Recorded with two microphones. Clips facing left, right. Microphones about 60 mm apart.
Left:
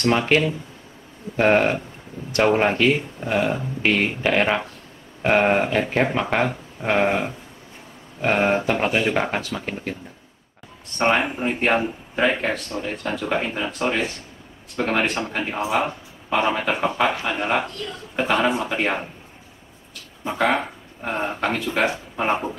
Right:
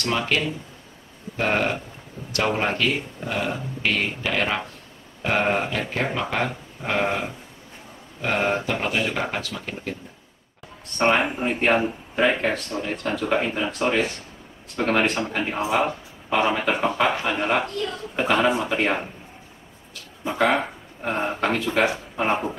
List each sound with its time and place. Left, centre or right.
0.0 s speech: left
11.0 s speech: centre
20.2 s speech: centre